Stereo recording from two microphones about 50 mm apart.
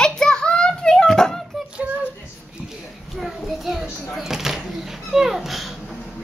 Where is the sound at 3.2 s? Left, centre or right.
Centre.